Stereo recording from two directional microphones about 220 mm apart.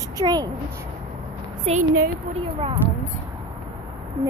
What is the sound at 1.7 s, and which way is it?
Speech, 25° right (ahead or behind).